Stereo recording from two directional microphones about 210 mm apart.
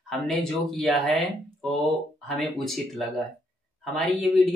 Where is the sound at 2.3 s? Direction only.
Centre (ahead or behind).